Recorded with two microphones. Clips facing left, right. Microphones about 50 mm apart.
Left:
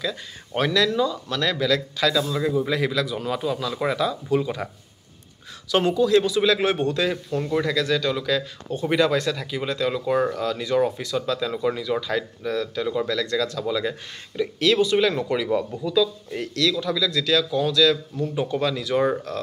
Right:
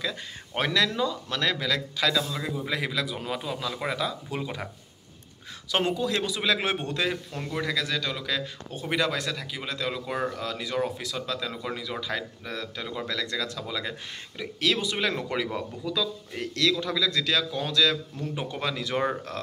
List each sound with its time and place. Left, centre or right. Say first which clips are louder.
0.0 s speech: left 3 dB; centre
2.1 s speech: left 7 dB; centre
5.7 s speech: left 7 dB; centre
7.3 s a man's voice: left 10 dB; right
7.6 s speech: left 6 dB; centre
16.8 s a man's voice: left 3 dB; right
19.3 s speech: left 5 dB; right